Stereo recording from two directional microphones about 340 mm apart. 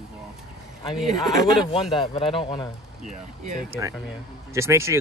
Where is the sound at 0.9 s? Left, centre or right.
Centre.